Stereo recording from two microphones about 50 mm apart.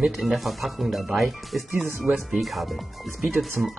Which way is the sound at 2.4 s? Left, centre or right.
Centre.